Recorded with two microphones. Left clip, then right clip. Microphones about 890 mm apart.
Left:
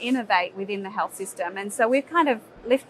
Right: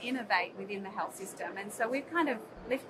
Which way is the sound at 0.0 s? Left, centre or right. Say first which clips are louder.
Left 9 dB; left.